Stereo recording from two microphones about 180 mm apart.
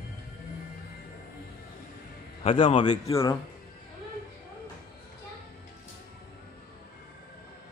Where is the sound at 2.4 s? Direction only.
30° left (ahead or behind).